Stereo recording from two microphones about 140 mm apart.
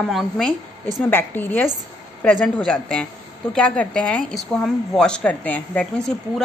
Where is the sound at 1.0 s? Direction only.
15° left (ahead or behind).